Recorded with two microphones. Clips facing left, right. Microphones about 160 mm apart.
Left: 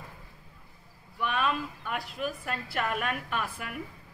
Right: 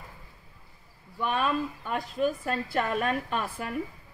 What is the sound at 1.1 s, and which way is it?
A woman's voice, 30° right (ahead or behind).